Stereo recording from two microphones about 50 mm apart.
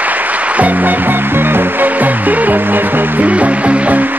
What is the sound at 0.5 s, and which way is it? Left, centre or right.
Music, right.